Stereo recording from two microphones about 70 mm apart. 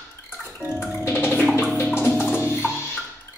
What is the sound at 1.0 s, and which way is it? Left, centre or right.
Music, left.